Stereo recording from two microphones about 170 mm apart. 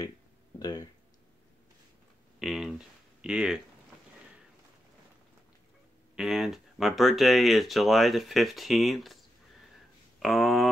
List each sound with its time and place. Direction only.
0.6 s speech: 25° left (ahead or behind)
2.4 s speech: centre (ahead or behind)
6.1 s speech: 5° right (ahead or behind)
10.2 s speech: centre (ahead or behind)